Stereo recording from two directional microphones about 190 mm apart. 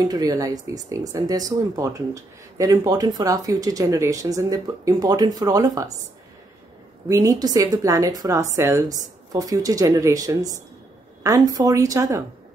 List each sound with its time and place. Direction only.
0.1 s speech: 20° right (ahead or behind)
7.1 s speech: 20° right (ahead or behind)